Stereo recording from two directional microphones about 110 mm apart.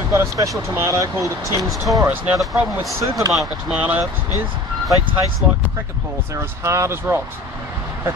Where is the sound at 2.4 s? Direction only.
Centre (ahead or behind).